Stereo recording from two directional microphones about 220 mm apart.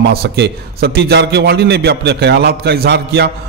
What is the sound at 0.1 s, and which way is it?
A man's voice, 45° right (ahead or behind).